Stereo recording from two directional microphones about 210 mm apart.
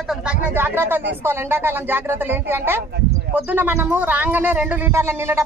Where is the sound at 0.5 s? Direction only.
10° right (ahead or behind).